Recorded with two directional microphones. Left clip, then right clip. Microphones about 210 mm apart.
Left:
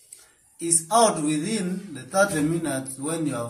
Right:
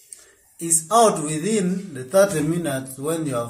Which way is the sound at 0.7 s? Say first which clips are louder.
Right 3 dB; 35° right (ahead or behind).